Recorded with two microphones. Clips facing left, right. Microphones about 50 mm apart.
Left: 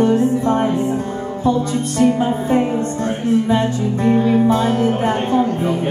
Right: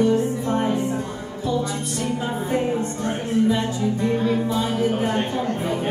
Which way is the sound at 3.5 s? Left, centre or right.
Left.